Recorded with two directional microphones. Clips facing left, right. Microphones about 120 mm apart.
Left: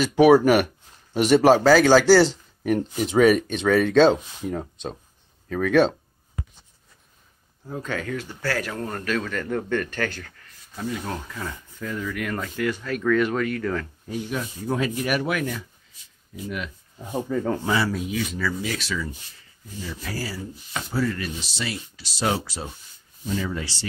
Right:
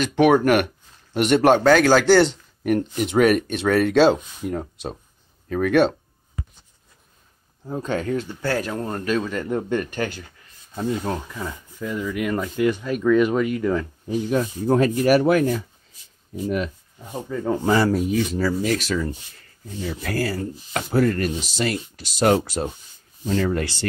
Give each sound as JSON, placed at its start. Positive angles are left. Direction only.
{"t": 0.0, "sound": "speech", "side_deg": 5}
{"t": 7.7, "sound": "speech", "side_deg": -25}
{"t": 11.1, "sound": "speech", "side_deg": -20}
{"t": 14.3, "sound": "speech", "side_deg": -45}
{"t": 17.3, "sound": "speech", "side_deg": 0}
{"t": 17.6, "sound": "speech", "side_deg": -45}
{"t": 19.8, "sound": "speech", "side_deg": -60}
{"t": 23.3, "sound": "speech", "side_deg": -65}